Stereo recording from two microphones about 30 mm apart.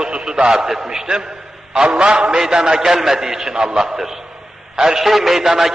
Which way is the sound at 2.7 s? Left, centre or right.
Centre.